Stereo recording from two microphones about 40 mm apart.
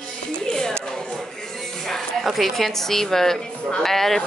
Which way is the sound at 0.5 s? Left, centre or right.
Centre.